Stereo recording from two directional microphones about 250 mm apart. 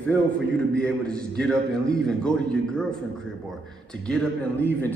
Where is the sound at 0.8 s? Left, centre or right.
Centre.